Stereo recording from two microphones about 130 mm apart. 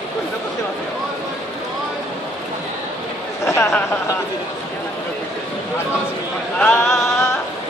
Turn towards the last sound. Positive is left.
turn(degrees=20)  # may be behind; listen again after turning